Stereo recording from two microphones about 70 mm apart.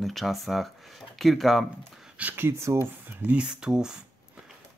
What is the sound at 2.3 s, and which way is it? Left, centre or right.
Speech, right.